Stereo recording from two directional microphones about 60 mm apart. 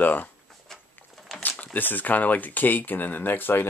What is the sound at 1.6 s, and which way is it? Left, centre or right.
Speech, left.